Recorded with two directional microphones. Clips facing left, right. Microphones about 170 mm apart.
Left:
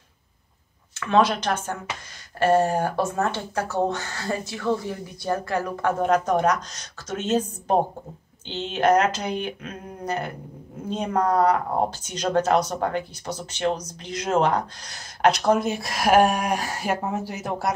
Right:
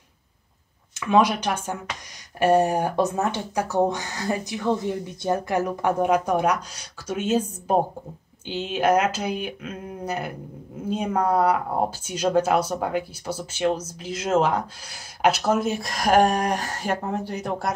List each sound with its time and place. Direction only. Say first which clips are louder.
0.9 s speech: right 1 dB; 15° right (ahead or behind); by 17.7 s centre (ahead or behind)